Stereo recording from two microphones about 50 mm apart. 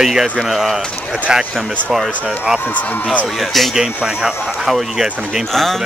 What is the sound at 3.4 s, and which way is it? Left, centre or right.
Speech, centre.